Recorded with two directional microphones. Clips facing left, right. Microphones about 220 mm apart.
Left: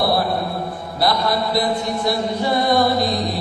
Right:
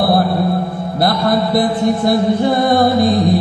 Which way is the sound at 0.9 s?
50° right (ahead or behind).